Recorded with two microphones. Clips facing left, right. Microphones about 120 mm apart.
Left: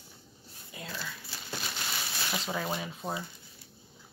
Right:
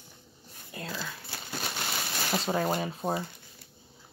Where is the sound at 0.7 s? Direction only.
50° right (ahead or behind).